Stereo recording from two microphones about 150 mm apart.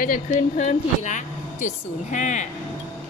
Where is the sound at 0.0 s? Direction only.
65° left (ahead or behind).